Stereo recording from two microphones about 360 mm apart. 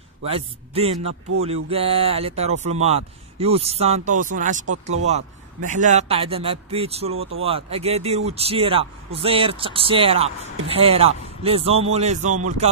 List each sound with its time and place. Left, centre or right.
0.2 s speech: centre